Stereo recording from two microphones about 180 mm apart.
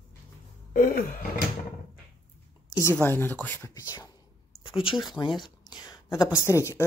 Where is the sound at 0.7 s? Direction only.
50° left (ahead or behind).